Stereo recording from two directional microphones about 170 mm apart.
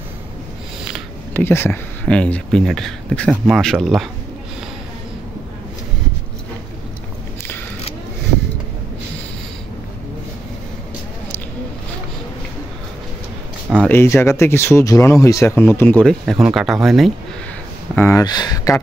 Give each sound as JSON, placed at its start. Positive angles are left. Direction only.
{"t": 1.3, "sound": "speech", "side_deg": 15}
{"t": 13.8, "sound": "speech", "side_deg": 15}
{"t": 17.9, "sound": "speech", "side_deg": 15}